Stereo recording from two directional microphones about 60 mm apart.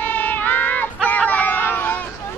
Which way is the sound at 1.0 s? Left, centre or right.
Left.